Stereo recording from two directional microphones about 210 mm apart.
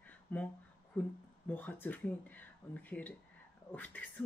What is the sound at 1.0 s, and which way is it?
Speech, 10° left (ahead or behind).